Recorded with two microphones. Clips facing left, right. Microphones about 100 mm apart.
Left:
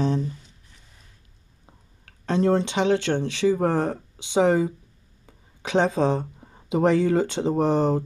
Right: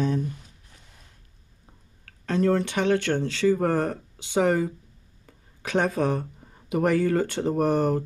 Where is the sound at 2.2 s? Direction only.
25° left (ahead or behind).